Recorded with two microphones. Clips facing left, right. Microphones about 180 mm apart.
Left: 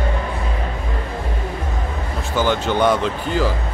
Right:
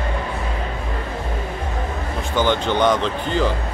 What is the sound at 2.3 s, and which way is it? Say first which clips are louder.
Speech: even; 5° left (ahead or behind).